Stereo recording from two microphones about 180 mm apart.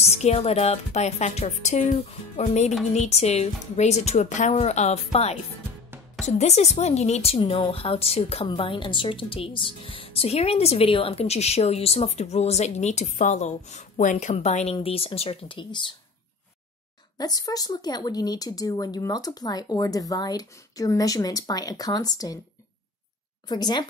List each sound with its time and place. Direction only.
0.1 s a woman's voice: 35° left (ahead or behind)
17.2 s speech: 20° left (ahead or behind)
23.5 s speech: 25° left (ahead or behind)